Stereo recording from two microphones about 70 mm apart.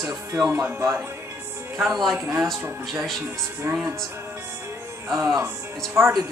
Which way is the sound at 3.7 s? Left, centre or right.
Right.